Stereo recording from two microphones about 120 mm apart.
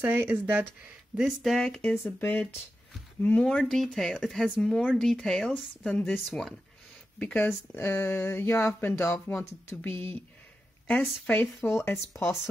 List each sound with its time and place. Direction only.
0.0 s speech: 15° right (ahead or behind)
1.1 s speech: 5° right (ahead or behind); by 3.4 s 15° left (ahead or behind)
3.4 s speech: 5° left (ahead or behind)
7.2 s speech: 15° left (ahead or behind)